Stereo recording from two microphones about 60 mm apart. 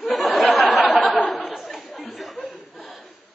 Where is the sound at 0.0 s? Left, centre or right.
Centre.